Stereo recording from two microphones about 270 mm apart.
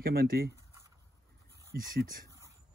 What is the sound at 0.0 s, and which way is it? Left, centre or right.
Speech, right.